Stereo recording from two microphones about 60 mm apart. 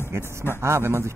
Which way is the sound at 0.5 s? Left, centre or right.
Right.